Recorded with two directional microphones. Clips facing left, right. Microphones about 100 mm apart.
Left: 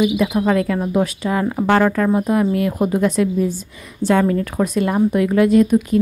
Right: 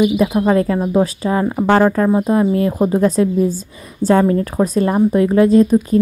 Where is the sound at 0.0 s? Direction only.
35° right (ahead or behind).